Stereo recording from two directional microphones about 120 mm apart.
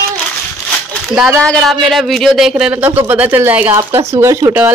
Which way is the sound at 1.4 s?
10° left (ahead or behind).